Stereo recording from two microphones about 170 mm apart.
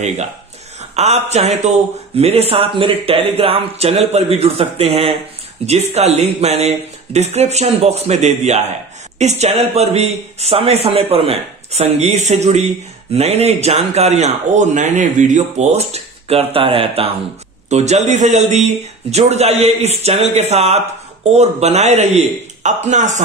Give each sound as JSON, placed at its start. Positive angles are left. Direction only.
{"t": 0.7, "sound": "speech", "side_deg": -40}